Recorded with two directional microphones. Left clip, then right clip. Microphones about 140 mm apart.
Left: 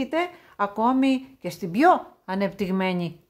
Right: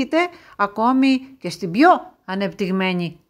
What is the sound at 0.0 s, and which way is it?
A woman's voice, 20° right (ahead or behind).